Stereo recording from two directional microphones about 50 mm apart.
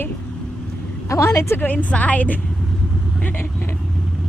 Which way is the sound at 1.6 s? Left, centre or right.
Left.